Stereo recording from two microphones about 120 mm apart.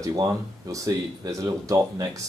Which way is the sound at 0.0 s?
30° right (ahead or behind).